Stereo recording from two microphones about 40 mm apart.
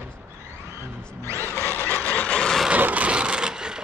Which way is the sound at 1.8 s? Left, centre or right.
Left.